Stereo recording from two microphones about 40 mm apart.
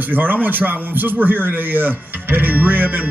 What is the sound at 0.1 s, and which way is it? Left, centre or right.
Speech, right.